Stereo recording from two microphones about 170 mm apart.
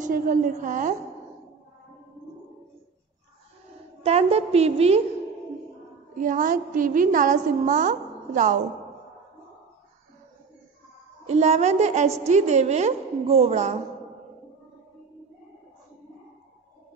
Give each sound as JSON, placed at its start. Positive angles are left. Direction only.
{"t": 0.0, "sound": "a woman's voice", "side_deg": -55}
{"t": 4.0, "sound": "a woman's voice", "side_deg": -40}
{"t": 6.1, "sound": "a woman's voice", "side_deg": -50}
{"t": 11.2, "sound": "a woman's voice", "side_deg": -40}